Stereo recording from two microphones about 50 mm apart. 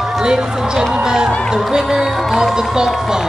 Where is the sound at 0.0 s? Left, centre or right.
Centre.